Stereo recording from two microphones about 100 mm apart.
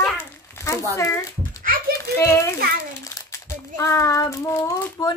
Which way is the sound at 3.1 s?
30° left (ahead or behind).